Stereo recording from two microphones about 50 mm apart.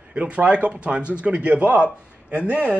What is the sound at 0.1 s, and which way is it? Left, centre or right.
A man's voice, right.